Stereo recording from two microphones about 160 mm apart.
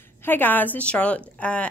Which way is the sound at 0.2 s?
10° left (ahead or behind).